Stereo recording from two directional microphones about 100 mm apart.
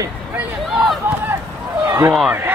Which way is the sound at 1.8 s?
30° right (ahead or behind).